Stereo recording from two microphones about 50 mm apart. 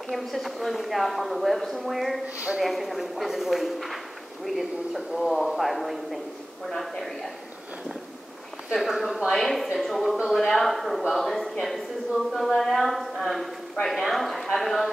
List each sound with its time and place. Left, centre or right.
0.1 s a woman's voice: centre
2.2 s speech: right
2.6 s a woman's voice: centre
8.7 s a woman's voice: centre